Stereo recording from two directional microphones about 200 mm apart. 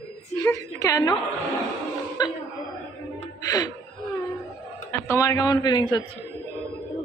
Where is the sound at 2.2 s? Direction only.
20° left (ahead or behind).